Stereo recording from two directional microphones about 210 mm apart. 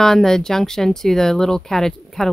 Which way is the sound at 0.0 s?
Centre (ahead or behind).